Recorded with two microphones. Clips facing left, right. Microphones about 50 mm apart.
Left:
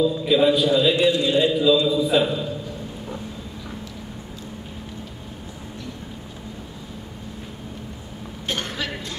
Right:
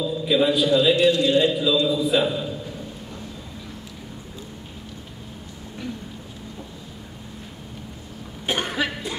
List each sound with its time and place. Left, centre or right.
0.3 s a man's voice: centre
0.9 s a man's voice: centre
1.5 s a man's voice: centre
8.5 s cough: centre